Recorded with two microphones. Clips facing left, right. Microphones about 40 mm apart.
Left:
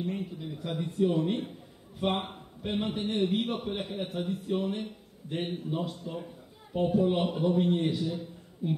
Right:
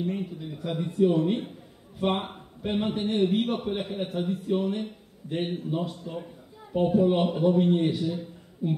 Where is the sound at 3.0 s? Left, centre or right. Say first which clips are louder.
Right 4 dB; right.